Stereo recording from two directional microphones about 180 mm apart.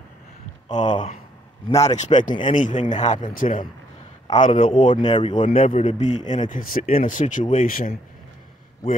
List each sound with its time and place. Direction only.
0.7 s speech: 25° left (ahead or behind)
1.7 s speech: 40° left (ahead or behind)
5.0 s speech: 30° left (ahead or behind)
5.3 s speech: 40° left (ahead or behind)